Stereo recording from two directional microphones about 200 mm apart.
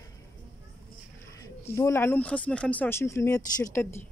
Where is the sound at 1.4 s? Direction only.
15° left (ahead or behind).